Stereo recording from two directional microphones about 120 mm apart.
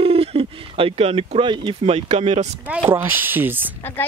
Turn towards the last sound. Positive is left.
turn(degrees=15)  # may be behind; listen again after turning